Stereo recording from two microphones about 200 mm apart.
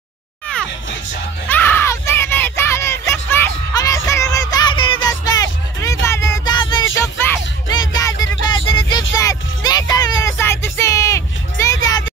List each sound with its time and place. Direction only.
1.5 s a sound: 10° left (ahead or behind)
7.0 s music: 15° left (ahead or behind)
8.5 s vehicle: 25° left (ahead or behind)
9.1 s music: 20° left (ahead or behind)